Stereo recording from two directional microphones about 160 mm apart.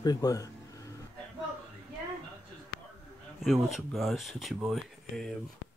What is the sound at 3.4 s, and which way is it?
Speech, centre (ahead or behind).